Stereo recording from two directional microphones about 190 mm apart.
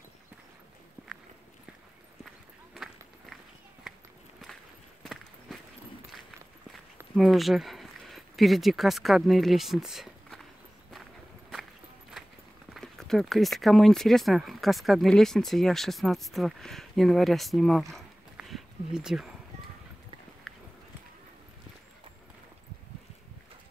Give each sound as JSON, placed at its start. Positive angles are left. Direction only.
{"t": 2.2, "sound": "run", "side_deg": 0}
{"t": 3.9, "sound": "walk", "side_deg": -5}
{"t": 5.0, "sound": "walk", "side_deg": 0}
{"t": 7.2, "sound": "speech", "side_deg": 0}
{"t": 12.7, "sound": "speech", "side_deg": 0}
{"t": 17.9, "sound": "dog", "side_deg": 0}